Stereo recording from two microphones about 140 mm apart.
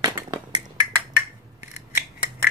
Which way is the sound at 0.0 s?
25° right (ahead or behind).